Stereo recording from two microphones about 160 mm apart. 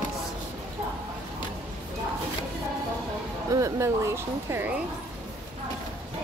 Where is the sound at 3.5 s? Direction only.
20° right (ahead or behind).